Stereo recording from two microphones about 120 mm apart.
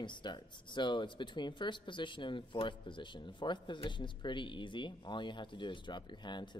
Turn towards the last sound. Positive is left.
turn(degrees=40)  # may be behind; listen again after turning